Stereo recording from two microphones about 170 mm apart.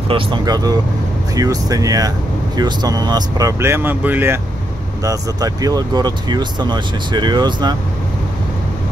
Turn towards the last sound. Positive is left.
turn(degrees=-25)  # may be behind; listen again after turning